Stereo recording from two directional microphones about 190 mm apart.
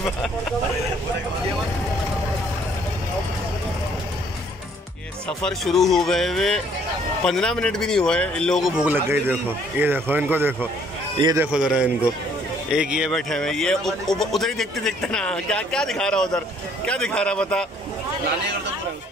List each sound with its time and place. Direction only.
0.0 s vehicle: centre (ahead or behind)
5.4 s a man's voice: centre (ahead or behind); by 11.4 s 20° right (ahead or behind)
11.5 s speech: 5° right (ahead or behind)